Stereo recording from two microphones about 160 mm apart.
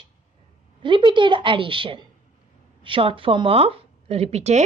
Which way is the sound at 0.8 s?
30° right (ahead or behind).